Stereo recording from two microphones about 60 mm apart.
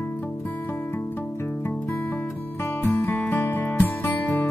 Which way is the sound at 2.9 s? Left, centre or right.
Left.